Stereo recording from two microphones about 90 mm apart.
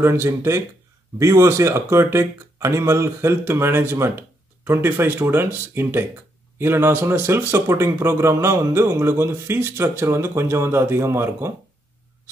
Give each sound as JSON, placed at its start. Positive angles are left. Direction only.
{"t": 0.0, "sound": "speech", "side_deg": -30}